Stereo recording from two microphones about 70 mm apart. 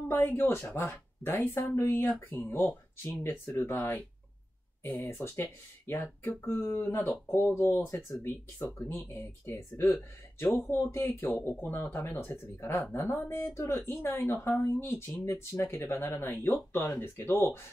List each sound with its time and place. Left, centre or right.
0.1 s speech: left
3.5 s speech: left
7.8 s speech: left
9.5 s speech: left
15.2 s speech: left